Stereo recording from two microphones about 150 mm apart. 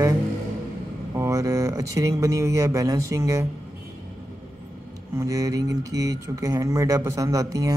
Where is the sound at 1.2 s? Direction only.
20° right (ahead or behind).